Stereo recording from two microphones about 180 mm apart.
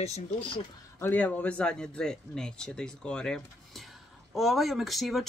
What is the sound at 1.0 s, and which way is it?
Speech, 10° left (ahead or behind).